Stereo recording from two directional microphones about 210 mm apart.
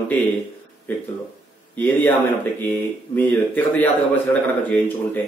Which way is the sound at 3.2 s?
10° left (ahead or behind).